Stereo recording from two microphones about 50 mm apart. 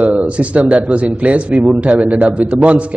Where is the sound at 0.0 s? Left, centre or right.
Right.